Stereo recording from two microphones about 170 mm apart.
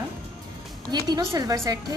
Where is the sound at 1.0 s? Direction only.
25° right (ahead or behind).